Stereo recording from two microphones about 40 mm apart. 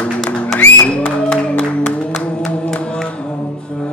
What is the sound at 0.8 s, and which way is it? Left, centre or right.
Music, left.